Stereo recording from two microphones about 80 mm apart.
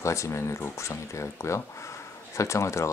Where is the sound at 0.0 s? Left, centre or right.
Left.